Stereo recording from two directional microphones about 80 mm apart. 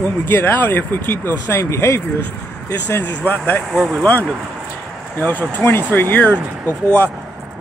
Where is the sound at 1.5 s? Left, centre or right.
Left.